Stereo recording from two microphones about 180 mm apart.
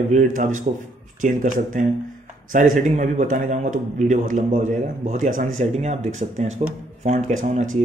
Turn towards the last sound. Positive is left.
turn(degrees=-40)  # may be behind; listen again after turning